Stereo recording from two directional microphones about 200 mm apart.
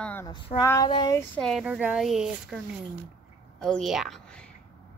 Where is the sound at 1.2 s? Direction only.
5° left (ahead or behind).